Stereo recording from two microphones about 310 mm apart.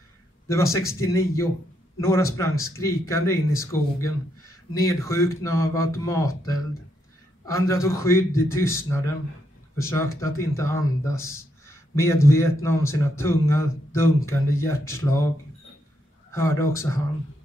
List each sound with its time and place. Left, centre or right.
0.7 s speech: centre
16.3 s speech: centre